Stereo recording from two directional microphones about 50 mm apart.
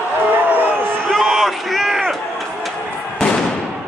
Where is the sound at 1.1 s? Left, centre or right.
Centre.